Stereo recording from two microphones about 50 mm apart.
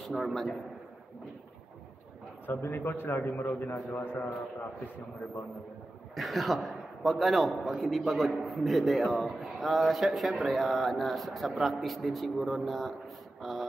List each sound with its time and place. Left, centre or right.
0.0 s a man's voice: centre
2.5 s a man's voice: left
6.1 s a man's voice: centre
13.4 s a sound: centre